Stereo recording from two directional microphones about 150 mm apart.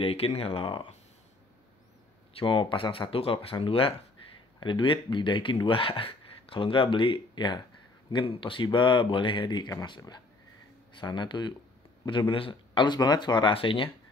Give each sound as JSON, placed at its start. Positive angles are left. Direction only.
{"t": 0.0, "sound": "speech", "side_deg": 40}
{"t": 2.3, "sound": "speech", "side_deg": 35}